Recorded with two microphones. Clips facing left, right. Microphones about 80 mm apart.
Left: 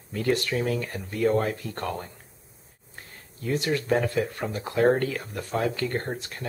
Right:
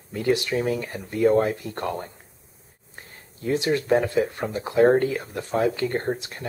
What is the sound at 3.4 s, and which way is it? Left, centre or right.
Speech, right.